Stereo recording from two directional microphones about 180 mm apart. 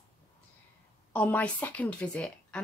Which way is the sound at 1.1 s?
10° left (ahead or behind).